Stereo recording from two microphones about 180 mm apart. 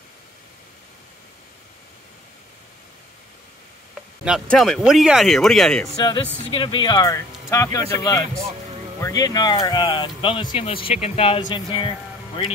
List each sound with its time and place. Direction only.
4.5 s speech: centre (ahead or behind)
5.9 s speech: 25° left (ahead or behind)